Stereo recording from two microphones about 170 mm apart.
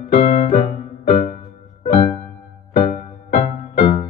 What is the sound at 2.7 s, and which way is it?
Music, 50° left (ahead or behind).